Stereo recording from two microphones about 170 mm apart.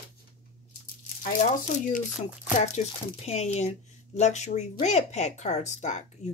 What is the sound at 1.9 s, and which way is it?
Speech, 50° left (ahead or behind).